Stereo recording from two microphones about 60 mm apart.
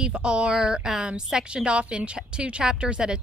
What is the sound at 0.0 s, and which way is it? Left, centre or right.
A woman's voice, centre.